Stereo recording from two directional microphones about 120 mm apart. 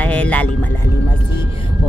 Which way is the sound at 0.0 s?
10° left (ahead or behind).